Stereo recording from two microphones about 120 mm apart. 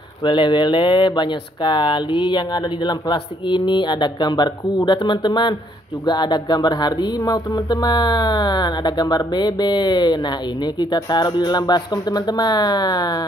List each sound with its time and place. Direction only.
0.2 s speech: 40° left (ahead or behind)